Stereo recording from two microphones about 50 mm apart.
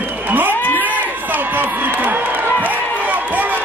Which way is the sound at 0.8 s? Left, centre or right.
Right.